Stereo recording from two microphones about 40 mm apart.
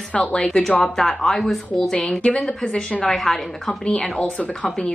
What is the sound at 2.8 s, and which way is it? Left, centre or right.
Speech, centre.